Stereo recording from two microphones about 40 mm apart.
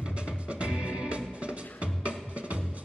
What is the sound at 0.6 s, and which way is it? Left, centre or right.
Music, right.